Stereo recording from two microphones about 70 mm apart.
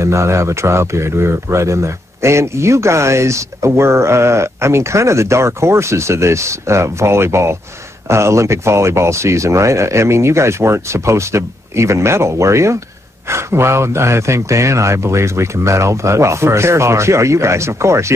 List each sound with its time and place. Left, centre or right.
0.0 s speech: right